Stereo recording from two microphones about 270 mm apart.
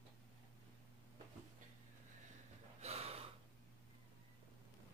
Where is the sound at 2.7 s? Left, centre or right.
Right.